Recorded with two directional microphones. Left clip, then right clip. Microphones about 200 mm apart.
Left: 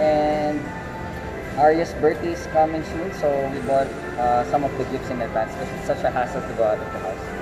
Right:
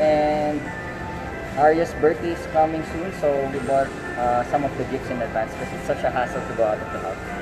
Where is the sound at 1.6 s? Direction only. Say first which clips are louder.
Even; 15° right (ahead or behind).